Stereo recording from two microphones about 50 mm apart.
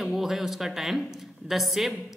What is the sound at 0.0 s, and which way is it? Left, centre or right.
Speech, centre.